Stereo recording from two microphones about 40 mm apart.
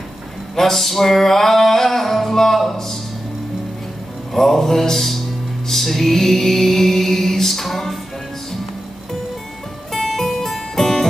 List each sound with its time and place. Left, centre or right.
0.6 s music: centre
4.3 s music: centre
9.9 s music: centre